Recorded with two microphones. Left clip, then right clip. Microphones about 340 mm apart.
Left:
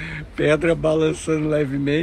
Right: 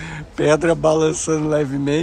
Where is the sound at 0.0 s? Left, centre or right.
Centre.